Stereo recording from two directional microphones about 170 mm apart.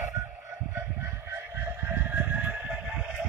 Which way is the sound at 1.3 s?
15° right (ahead or behind).